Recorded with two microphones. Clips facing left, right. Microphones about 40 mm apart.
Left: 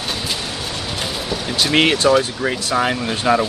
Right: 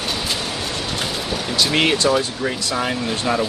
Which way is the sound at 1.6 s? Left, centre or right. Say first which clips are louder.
Left 2 dB; centre.